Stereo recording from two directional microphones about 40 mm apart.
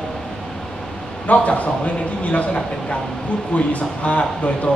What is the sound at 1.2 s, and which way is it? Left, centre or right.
Speech, left.